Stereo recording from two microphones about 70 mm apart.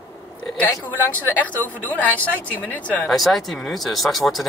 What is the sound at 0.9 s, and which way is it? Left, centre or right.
Speech, left.